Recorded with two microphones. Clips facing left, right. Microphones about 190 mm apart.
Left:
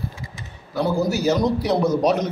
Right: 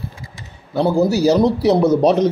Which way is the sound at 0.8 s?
30° right (ahead or behind).